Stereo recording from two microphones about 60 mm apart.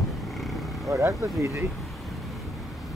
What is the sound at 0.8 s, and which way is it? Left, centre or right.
Speech, right.